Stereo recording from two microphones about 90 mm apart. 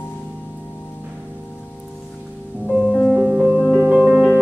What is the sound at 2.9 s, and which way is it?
Music, 5° right (ahead or behind).